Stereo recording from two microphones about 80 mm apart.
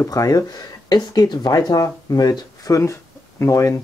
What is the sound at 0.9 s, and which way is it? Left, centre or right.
Speech, left.